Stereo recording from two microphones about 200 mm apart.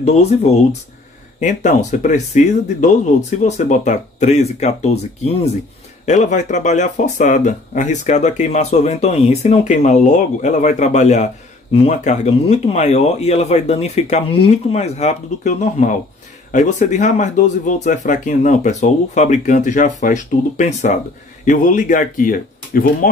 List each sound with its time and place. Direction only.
0.0 s speech: 30° left (ahead or behind)
6.0 s speech: 35° left (ahead or behind)